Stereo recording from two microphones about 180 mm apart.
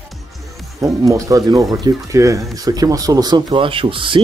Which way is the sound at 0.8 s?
20° right (ahead or behind).